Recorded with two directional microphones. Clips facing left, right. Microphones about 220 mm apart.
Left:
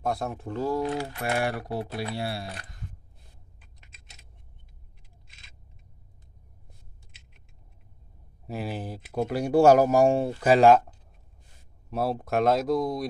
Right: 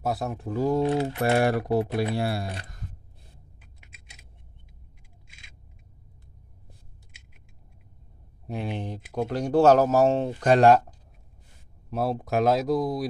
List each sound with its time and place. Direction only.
0.0 s speech: centre (ahead or behind)
0.6 s speech: 20° right (ahead or behind)
0.8 s typing: 25° right (ahead or behind)
1.3 s speech: 40° right (ahead or behind)
8.5 s speech: 5° left (ahead or behind)
11.9 s speech: centre (ahead or behind)